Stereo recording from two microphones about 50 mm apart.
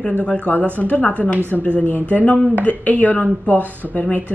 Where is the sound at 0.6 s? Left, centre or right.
Right.